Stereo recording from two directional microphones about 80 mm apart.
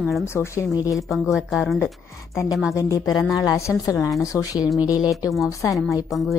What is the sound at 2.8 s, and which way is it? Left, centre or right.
A woman's voice, left.